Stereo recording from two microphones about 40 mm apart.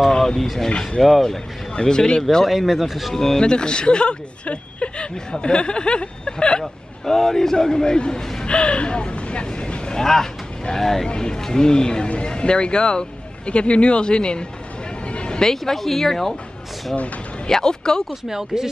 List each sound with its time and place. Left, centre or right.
0.2 s speech: centre
0.7 s speech: left
1.0 s speech: centre
1.8 s speech: centre
2.4 s speech: centre
3.2 s speech: centre
6.6 s a man's voice: centre
8.5 s speech: left
10.8 s a man's voice: centre; by 14.4 s left
15.0 s a sound: left
15.4 s a man's voice: centre
17.5 s a man's voice: centre
18.3 s speech: centre